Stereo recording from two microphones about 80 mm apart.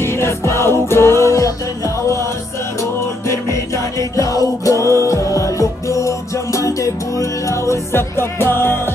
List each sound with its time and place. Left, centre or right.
0.0 s music: left
2.8 s music: left